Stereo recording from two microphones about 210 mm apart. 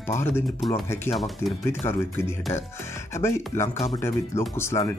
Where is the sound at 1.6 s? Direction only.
10° left (ahead or behind).